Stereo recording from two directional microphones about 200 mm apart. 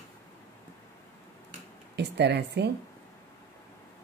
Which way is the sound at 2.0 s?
55° right (ahead or behind).